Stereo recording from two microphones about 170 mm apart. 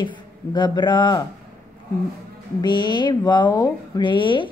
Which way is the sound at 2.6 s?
25° left (ahead or behind).